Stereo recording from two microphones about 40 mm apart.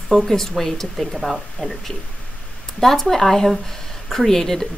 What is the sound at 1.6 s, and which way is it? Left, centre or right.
Speech, centre.